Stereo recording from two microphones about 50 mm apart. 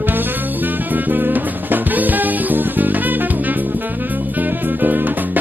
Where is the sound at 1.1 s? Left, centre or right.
Right.